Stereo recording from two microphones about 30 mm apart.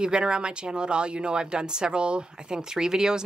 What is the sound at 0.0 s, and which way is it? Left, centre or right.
Speech, right.